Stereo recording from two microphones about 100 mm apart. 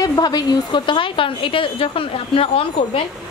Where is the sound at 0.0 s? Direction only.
40° left (ahead or behind).